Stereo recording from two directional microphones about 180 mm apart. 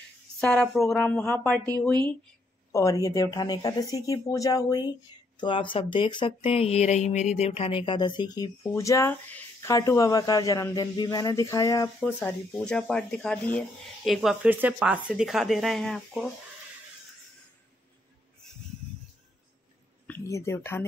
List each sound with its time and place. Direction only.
0.4 s speech: 5° left (ahead or behind)
2.7 s speech: 20° left (ahead or behind)
12.0 s speech: 5° left (ahead or behind)
20.1 s speech: 15° left (ahead or behind)